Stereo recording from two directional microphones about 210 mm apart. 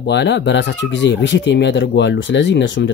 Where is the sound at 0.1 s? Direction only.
55° left (ahead or behind).